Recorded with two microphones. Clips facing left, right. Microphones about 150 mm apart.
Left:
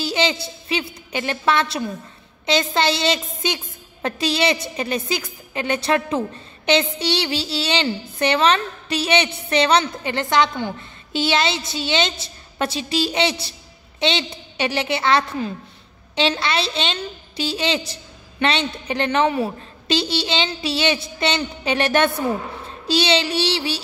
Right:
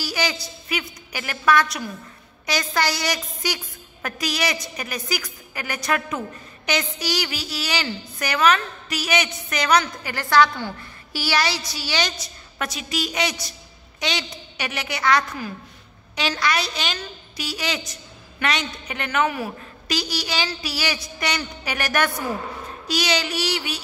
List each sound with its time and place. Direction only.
0.0 s a woman's voice: 25° left (ahead or behind)